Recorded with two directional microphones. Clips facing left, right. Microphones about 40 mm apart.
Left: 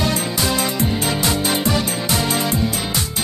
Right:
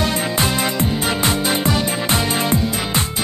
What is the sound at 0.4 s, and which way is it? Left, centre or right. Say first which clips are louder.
Music: right 1 dB; right.